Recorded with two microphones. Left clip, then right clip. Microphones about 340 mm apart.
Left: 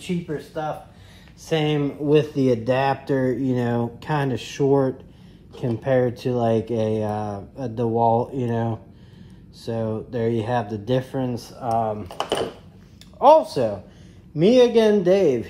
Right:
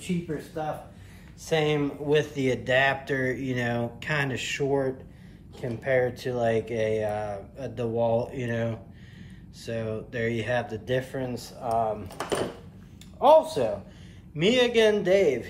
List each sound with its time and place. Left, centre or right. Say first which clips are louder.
0.3 s speech: left 4 dB; centre
1.4 s speech: left 2 dB; left
12.1 s speech: left 5 dB; centre
13.2 s speech: left 5 dB; left
14.4 s speech: left 6 dB; centre